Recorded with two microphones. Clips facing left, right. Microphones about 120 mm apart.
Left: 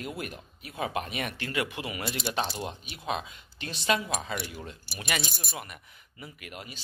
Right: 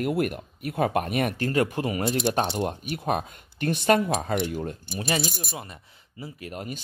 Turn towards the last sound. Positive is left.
turn(degrees=-35)  # may be behind; listen again after turning